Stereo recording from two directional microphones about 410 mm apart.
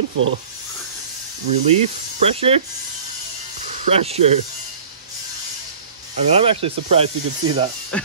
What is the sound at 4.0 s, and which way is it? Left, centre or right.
Speech, centre.